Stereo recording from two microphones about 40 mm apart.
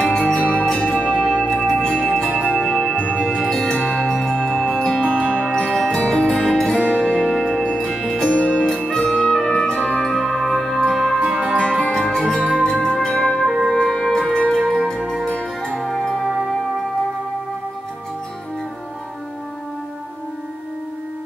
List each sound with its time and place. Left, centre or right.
0.0 s music: left
3.0 s music: left
3.3 s music: centre
6.1 s music: left
6.5 s music: centre
7.2 s music: centre
8.3 s music: left; by 11.1 s centre
11.3 s music: right
11.9 s music: centre
13.5 s music: centre
14.5 s music: left; by 16.4 s centre